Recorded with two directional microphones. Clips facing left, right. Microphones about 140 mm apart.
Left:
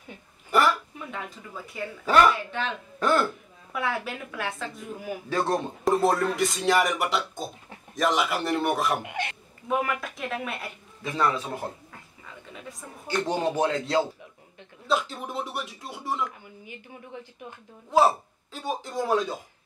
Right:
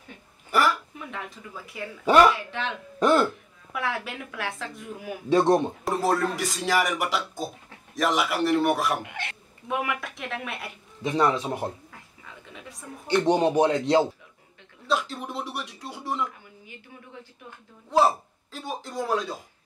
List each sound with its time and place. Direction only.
0.5 s a sound: centre (ahead or behind)
2.3 s speech: centre (ahead or behind)
3.0 s speech: 20° right (ahead or behind)
3.7 s speech: centre (ahead or behind)
5.3 s speech: 20° right (ahead or behind)
5.9 s speech: centre (ahead or behind)
9.0 s speech: 15° left (ahead or behind)
9.7 s speech: centre (ahead or behind)
11.0 s speech: 20° right (ahead or behind)
11.9 s a sound: centre (ahead or behind)
13.0 s speech: 20° right (ahead or behind)
14.9 s a sound: centre (ahead or behind)
17.9 s speech: centre (ahead or behind)